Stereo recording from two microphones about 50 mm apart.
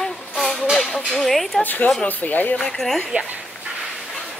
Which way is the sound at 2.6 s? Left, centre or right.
Centre.